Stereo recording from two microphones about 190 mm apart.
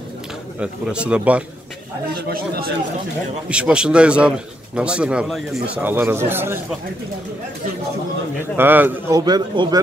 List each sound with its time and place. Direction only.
0.6 s a man's voice: 5° right (ahead or behind)
2.2 s speech: 55° right (ahead or behind)
3.4 s a man's voice: 5° right (ahead or behind)
8.5 s speech: 10° right (ahead or behind)